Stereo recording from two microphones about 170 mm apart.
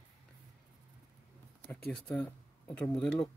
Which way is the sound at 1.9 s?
5° left (ahead or behind).